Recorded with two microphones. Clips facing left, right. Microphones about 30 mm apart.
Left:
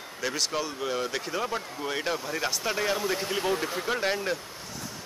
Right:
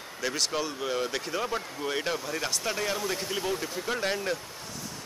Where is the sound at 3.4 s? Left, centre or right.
Left.